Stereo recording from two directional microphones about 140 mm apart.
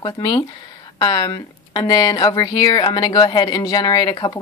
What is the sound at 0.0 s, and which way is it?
Speech, 30° left (ahead or behind).